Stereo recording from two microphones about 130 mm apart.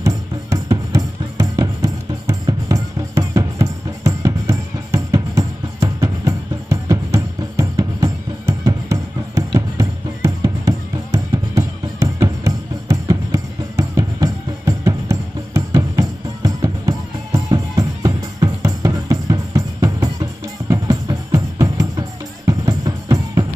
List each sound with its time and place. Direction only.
0.0 s music: 25° right (ahead or behind)